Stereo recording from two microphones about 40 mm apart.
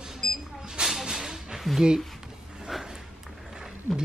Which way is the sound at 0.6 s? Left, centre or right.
Centre.